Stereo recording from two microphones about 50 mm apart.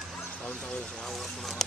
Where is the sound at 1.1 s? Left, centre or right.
Centre.